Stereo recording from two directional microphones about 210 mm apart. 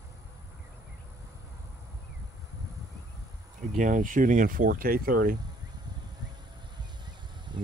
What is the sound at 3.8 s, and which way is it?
Speech, 40° right (ahead or behind).